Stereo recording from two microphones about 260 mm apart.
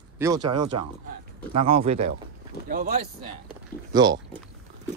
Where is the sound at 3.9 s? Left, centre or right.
Centre.